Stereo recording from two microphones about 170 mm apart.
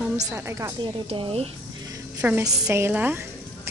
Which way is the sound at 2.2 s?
10° right (ahead or behind).